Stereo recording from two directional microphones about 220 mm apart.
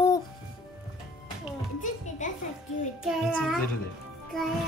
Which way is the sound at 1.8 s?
35° left (ahead or behind).